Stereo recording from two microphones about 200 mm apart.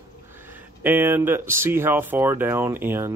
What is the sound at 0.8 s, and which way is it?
Speech, 10° right (ahead or behind).